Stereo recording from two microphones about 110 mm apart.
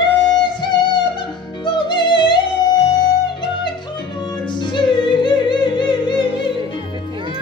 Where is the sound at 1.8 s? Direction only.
45° left (ahead or behind).